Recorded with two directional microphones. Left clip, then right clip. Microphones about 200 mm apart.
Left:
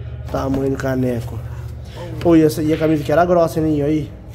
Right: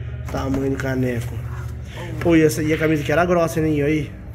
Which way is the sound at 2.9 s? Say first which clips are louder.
Left 4 dB; 10° left (ahead or behind).